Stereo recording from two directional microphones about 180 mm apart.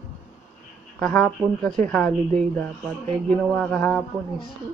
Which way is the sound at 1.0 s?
5° left (ahead or behind).